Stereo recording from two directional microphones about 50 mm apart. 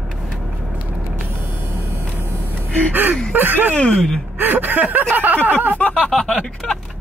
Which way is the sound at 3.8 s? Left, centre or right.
Centre.